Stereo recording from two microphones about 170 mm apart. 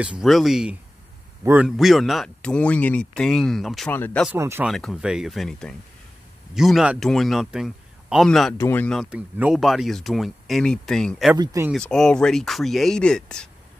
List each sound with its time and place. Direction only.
0.0 s speech: 5° right (ahead or behind)
1.4 s a man's voice: 15° right (ahead or behind)
1.8 s speech: centre (ahead or behind)
4.3 s speech: 15° right (ahead or behind)
4.6 s speech: centre (ahead or behind)
8.5 s speech: 15° left (ahead or behind)
9.1 s speech: 5° right (ahead or behind)
11.3 s speech: 25° right (ahead or behind)
11.7 s speech: 5° left (ahead or behind)